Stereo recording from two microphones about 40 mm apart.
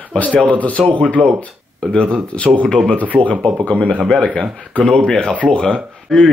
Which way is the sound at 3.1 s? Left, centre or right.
Right.